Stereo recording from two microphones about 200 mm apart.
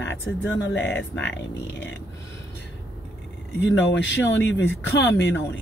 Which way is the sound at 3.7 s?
65° left (ahead or behind).